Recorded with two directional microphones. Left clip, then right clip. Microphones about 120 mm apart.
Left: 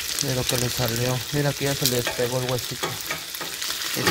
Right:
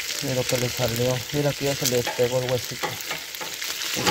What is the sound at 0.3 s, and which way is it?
Speech, 5° right (ahead or behind).